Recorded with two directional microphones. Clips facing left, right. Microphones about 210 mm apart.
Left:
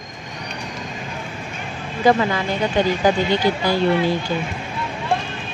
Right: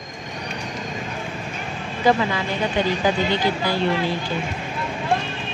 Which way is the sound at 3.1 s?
45° left (ahead or behind).